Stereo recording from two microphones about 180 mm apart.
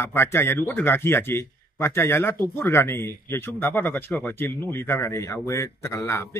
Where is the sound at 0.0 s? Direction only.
15° left (ahead or behind).